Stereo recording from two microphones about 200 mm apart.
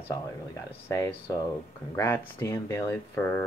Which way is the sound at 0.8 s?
15° left (ahead or behind).